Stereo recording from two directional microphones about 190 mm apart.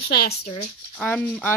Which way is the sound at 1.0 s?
10° left (ahead or behind).